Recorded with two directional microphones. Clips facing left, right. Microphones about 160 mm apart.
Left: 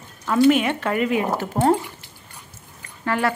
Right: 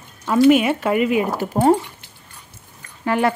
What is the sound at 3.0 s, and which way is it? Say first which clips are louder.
Speech: right 3 dB; 20° right (ahead or behind).